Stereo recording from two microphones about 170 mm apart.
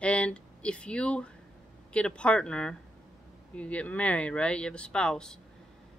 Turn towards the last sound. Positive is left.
turn(degrees=5)  # may be behind; listen again after turning